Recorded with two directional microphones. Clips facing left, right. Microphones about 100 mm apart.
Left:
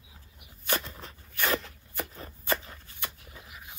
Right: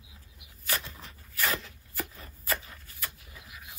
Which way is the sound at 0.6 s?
30° left (ahead or behind).